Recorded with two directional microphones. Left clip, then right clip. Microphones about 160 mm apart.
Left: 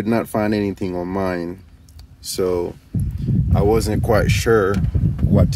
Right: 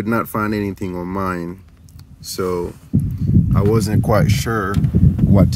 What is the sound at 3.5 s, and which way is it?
Speech, 15° left (ahead or behind).